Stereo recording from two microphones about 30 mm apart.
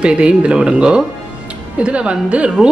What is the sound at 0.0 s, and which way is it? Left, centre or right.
Speech, right.